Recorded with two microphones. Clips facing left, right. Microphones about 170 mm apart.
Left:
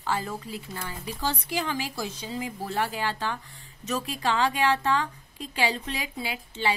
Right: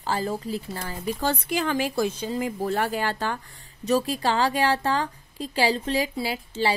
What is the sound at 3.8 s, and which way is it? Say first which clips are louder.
Speech: right 6 dB; 35° right (ahead or behind).